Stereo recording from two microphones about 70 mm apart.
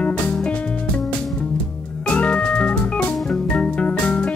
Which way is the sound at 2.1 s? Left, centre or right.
Centre.